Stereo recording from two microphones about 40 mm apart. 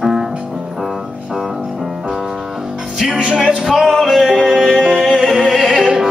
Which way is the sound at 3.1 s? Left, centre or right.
Right.